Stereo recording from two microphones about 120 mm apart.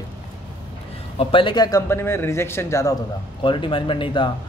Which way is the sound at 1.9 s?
20° left (ahead or behind).